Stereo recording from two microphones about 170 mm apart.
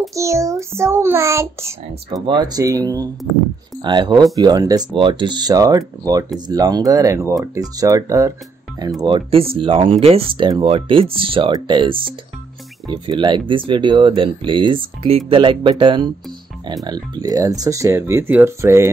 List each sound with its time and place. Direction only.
0.1 s speech: 20° right (ahead or behind)
9.0 s speech: 30° right (ahead or behind); by 18.9 s 15° right (ahead or behind)